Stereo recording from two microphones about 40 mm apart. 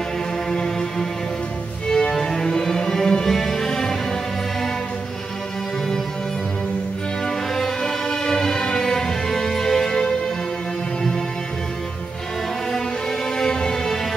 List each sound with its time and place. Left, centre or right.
0.5 s music: centre
7.2 s music: centre
13.4 s music: centre